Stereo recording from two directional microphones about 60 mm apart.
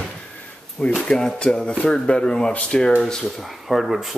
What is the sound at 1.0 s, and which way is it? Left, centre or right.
Speech, centre.